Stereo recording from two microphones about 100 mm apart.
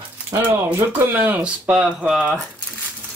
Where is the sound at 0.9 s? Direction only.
20° right (ahead or behind).